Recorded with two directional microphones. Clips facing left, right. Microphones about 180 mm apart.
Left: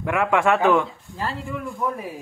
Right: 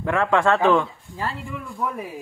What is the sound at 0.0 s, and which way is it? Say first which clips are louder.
Speech: even; 10° left (ahead or behind).